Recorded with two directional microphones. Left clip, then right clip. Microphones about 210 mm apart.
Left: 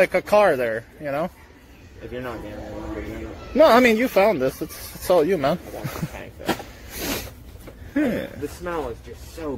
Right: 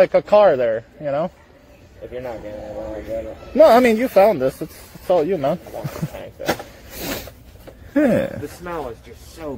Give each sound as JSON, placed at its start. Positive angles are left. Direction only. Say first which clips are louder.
{"t": 0.0, "sound": "speech", "louder": "right 4 dB", "side_deg": -15}
{"t": 3.5, "sound": "speech", "louder": "right 3 dB", "side_deg": -20}
{"t": 5.0, "sound": "speech", "louder": "right 1 dB", "side_deg": -5}
{"t": 6.5, "sound": "a sound", "louder": "even", "side_deg": 0}
{"t": 7.9, "sound": "speech", "louder": "right 7 dB", "side_deg": -45}
{"t": 8.6, "sound": "speech", "louder": "even", "side_deg": -10}